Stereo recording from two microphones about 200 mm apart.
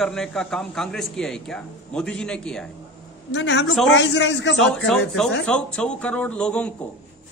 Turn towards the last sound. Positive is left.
turn(degrees=5)  # may be behind; listen again after turning